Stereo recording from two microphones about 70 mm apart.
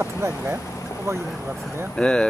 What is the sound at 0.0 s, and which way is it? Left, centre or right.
Speech, right.